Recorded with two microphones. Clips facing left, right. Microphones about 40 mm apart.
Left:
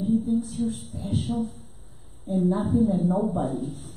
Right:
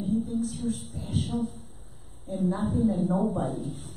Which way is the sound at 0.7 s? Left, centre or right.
Centre.